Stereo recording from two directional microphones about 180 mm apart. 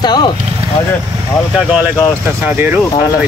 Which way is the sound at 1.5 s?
10° right (ahead or behind).